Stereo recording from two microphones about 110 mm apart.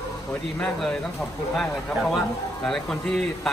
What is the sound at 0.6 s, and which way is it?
A man's voice, 5° left (ahead or behind).